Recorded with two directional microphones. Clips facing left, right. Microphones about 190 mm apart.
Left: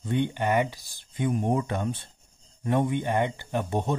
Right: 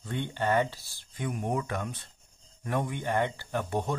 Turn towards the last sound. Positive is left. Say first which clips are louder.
# left 3 dB
turn(degrees=20)  # may be behind; listen again after turning